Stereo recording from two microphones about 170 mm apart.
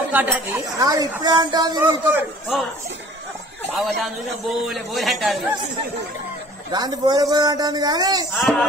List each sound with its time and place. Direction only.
0.1 s speech: 10° right (ahead or behind)
1.8 s a man's voice: 15° right (ahead or behind)
3.7 s a man's voice: centre (ahead or behind)
6.7 s speech: 25° right (ahead or behind)